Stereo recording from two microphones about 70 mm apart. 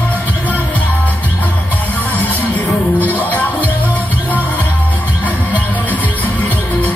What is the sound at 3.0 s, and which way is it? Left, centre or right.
Music, left.